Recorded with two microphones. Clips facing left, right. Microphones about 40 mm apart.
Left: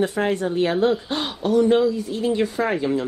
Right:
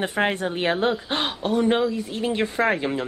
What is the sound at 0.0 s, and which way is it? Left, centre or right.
Speech, right.